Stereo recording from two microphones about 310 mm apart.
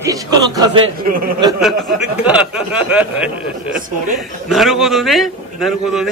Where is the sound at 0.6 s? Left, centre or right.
Centre.